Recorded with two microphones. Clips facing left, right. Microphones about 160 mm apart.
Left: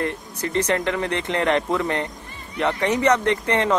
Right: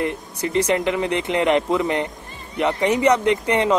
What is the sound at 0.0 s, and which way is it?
A man's voice, 15° right (ahead or behind).